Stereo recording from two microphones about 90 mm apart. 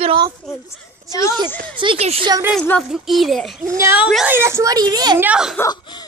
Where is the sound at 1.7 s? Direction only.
65° right (ahead or behind).